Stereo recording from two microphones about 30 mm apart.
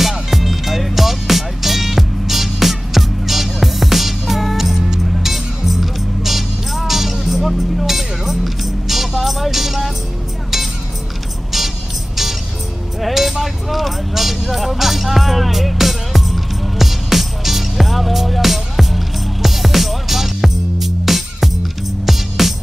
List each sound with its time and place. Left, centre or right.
0.3 s music: centre
13.0 s music: centre